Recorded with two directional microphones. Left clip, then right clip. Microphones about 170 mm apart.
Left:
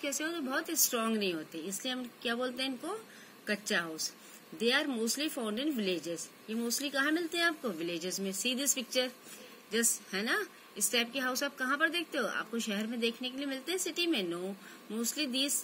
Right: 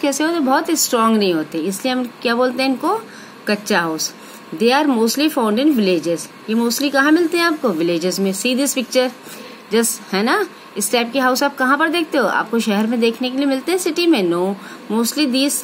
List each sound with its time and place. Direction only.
0.0 s a woman's voice: 40° right (ahead or behind)